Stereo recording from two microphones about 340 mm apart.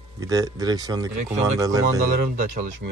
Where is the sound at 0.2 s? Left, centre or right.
Centre.